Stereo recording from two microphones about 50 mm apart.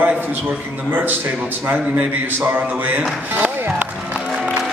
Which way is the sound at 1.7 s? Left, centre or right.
Right.